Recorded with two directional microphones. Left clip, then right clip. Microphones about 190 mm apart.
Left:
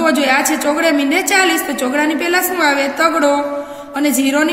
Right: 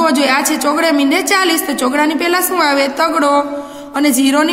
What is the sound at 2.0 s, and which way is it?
A woman's voice, 50° right (ahead or behind).